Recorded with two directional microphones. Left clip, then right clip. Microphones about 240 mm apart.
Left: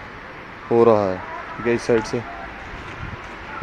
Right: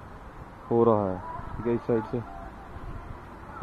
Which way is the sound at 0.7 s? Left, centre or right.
Centre.